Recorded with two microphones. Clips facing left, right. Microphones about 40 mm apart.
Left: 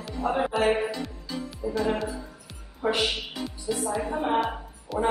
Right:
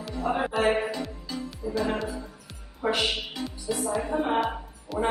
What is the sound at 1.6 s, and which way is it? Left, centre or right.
Speech, centre.